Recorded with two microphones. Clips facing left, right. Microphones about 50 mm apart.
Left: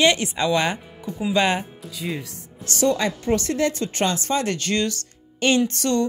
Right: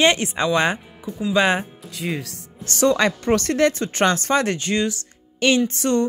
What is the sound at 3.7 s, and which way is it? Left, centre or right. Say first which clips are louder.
Speech: right 4 dB; right.